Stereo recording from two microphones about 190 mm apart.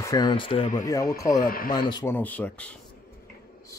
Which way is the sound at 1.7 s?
20° left (ahead or behind).